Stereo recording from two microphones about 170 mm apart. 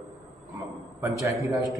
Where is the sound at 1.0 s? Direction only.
20° right (ahead or behind).